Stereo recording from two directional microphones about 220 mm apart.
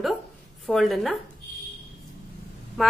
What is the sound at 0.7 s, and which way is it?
Speech, centre (ahead or behind).